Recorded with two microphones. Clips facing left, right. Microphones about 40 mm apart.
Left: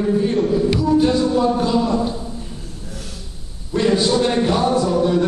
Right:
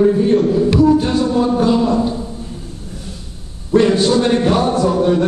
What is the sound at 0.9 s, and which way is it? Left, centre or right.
Music, centre.